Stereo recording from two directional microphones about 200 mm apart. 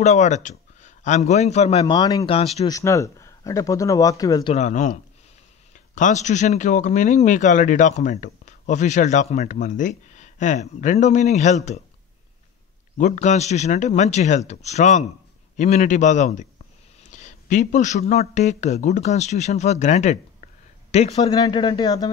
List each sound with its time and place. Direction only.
0.0 s a man's voice: 35° left (ahead or behind); by 2.3 s 20° left (ahead or behind)
2.3 s speech: 30° left (ahead or behind)
2.6 s speech: 15° left (ahead or behind)
4.6 s speech: 35° left (ahead or behind)
5.9 s speech: 40° left (ahead or behind)
12.9 s speech: 35° left (ahead or behind)
21.3 s speech: 20° left (ahead or behind)